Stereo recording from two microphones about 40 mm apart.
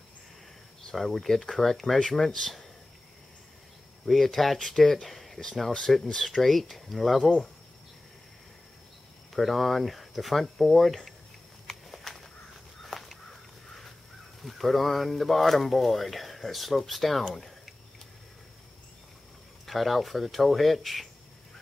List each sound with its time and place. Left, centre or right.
0.9 s speech: centre
4.0 s speech: centre
9.3 s speech: centre
11.7 s a sound: centre
12.8 s crow: centre
14.4 s speech: centre
17.3 s a sound: centre
19.6 s speech: centre